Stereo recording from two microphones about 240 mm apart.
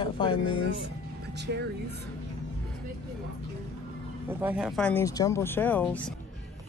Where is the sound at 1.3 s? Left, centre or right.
Right.